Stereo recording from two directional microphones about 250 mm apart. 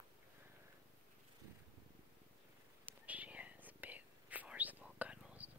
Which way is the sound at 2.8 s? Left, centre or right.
Centre.